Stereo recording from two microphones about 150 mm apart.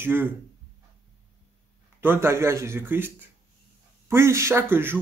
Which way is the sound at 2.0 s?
15° right (ahead or behind).